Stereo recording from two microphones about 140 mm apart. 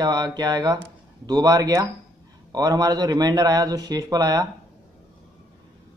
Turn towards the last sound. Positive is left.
turn(degrees=-25)  # may be behind; listen again after turning